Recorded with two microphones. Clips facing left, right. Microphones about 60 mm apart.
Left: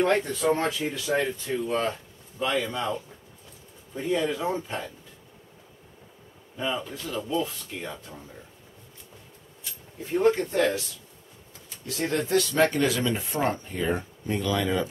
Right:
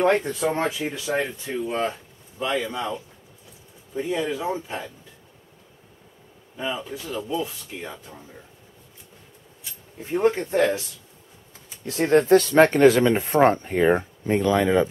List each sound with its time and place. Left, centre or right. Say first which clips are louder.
0.5 s speech: left 1 dB; centre
6.5 s speech: right 1 dB; centre
10.1 s speech: right 2 dB; right
11.8 s speech: right 9 dB; right